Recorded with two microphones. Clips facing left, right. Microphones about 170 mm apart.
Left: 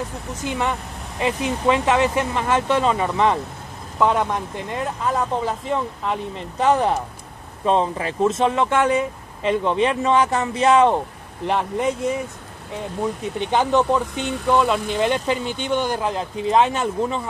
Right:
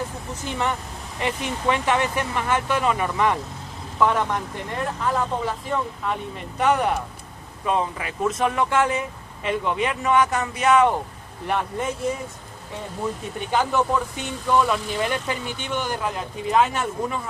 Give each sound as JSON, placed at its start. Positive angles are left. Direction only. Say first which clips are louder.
{"t": 0.4, "sound": "speech", "louder": "left 2 dB", "side_deg": 15}
{"t": 6.6, "sound": "speech", "louder": "left 3 dB", "side_deg": 25}
{"t": 13.4, "sound": "speech", "louder": "left 3 dB", "side_deg": 20}